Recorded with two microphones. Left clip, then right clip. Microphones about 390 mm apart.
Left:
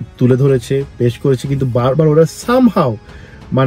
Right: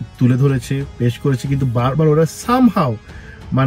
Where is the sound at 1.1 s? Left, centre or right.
Centre.